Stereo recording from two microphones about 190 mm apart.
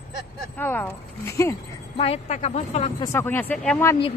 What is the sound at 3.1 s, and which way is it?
Speech, 10° left (ahead or behind).